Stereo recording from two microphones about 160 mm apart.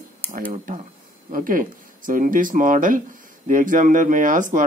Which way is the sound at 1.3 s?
60° right (ahead or behind).